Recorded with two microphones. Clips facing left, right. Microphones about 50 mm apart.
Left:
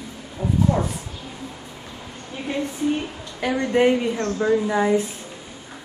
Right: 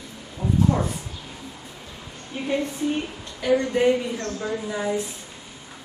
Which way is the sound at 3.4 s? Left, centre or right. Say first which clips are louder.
Right 1 dB; left.